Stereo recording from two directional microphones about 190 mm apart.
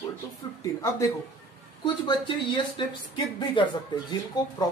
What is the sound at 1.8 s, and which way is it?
Speech, 25° left (ahead or behind).